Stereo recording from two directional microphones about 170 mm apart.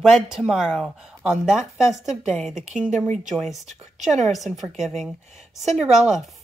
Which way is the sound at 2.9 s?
45° right (ahead or behind).